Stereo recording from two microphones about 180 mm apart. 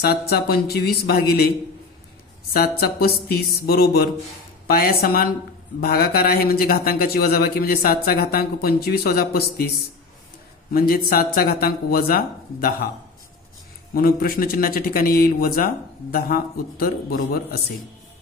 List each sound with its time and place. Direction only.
0.0 s speech: 60° left (ahead or behind)
2.8 s speech: 60° left (ahead or behind)
10.7 s speech: 55° left (ahead or behind)
13.9 s speech: 55° left (ahead or behind)